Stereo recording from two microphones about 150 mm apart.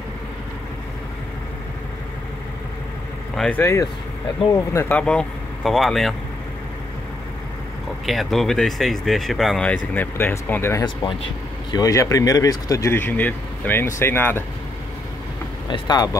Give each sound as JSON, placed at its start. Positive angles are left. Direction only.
{"t": 3.3, "sound": "speech", "side_deg": 5}
{"t": 3.6, "sound": "speech", "side_deg": 20}
{"t": 8.0, "sound": "speech", "side_deg": 0}
{"t": 15.7, "sound": "speech", "side_deg": 25}